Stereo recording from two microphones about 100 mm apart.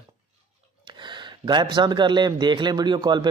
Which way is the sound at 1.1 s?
50° right (ahead or behind).